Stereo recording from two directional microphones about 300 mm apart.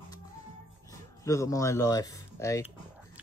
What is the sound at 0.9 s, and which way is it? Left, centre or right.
Speech, centre.